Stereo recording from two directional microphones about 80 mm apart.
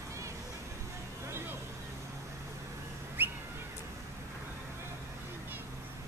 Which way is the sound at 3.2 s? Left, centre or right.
Right.